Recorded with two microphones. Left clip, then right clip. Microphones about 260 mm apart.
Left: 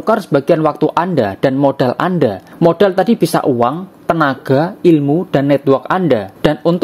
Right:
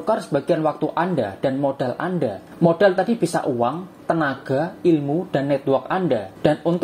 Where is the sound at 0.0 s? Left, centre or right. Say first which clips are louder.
Left 8 dB; left.